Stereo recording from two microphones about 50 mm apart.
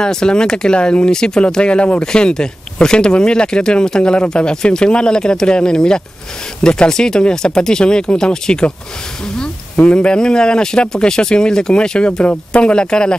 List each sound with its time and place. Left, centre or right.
0.0 s speech: centre
9.8 s speech: centre